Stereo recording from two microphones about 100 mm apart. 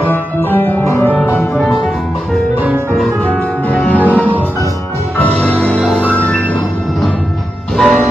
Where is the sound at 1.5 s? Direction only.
Centre (ahead or behind).